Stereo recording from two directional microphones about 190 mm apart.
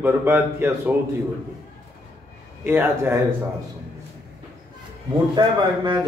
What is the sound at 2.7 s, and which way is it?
Speech, 10° right (ahead or behind).